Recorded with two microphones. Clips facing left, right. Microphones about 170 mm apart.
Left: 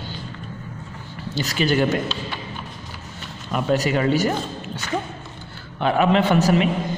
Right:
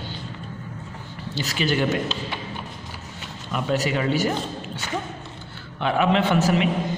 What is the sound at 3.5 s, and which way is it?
Speech, 45° left (ahead or behind).